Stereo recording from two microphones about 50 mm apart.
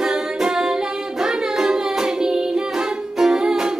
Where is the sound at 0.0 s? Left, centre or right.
Centre.